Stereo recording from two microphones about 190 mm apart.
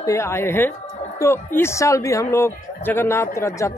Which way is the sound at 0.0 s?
15° left (ahead or behind).